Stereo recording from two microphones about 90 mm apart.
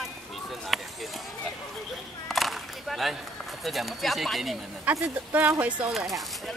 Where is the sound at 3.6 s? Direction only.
Centre (ahead or behind).